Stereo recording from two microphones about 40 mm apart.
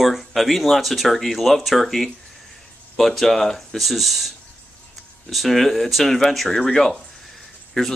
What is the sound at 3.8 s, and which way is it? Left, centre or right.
Speech, centre.